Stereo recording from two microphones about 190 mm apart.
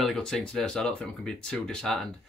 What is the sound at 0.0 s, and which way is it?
Speech, centre (ahead or behind).